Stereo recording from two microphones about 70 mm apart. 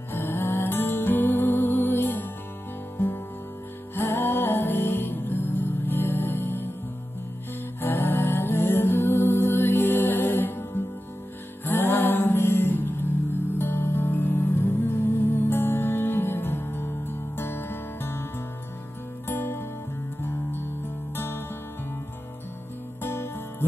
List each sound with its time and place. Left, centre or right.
0.1 s music: left
3.9 s music: left
7.8 s music: left
19.2 s music: left
23.0 s music: left